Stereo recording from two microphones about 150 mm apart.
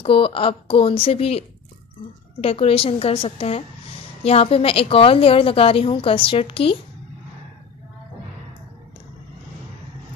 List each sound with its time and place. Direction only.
0.0 s a woman's voice: 35° left (ahead or behind)
2.4 s a woman's voice: 40° left (ahead or behind)